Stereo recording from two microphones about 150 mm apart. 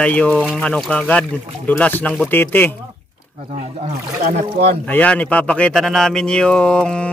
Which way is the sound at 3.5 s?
45° right (ahead or behind).